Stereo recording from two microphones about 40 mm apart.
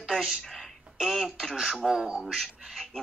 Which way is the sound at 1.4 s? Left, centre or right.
Centre.